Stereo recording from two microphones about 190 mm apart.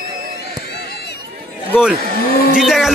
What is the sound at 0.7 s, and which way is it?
Run, 55° left (ahead or behind).